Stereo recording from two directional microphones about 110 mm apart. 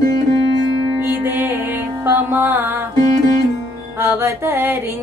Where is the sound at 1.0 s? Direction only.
20° right (ahead or behind).